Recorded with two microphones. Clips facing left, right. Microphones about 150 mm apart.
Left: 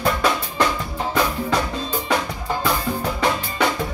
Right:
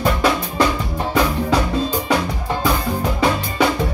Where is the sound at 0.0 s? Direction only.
10° right (ahead or behind).